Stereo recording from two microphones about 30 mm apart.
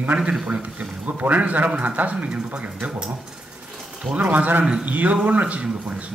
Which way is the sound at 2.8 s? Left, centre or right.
Right.